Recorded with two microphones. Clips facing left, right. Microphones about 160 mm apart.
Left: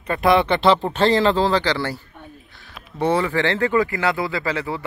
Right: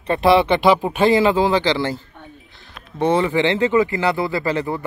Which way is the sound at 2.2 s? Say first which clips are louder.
Even; centre (ahead or behind).